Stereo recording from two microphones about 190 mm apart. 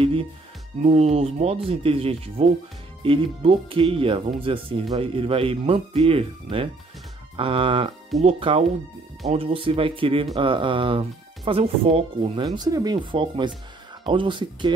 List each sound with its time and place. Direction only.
0.0 s speech: 30° right (ahead or behind)